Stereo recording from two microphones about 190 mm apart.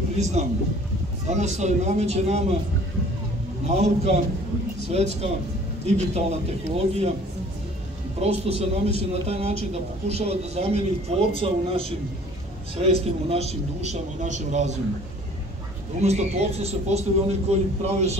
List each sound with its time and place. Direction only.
0.2 s a man's voice: 35° right (ahead or behind)
3.6 s a man's voice: 35° right (ahead or behind)
8.2 s a man's voice: 30° right (ahead or behind)
12.8 s a man's voice: 30° right (ahead or behind)
16.0 s a man's voice: 35° right (ahead or behind)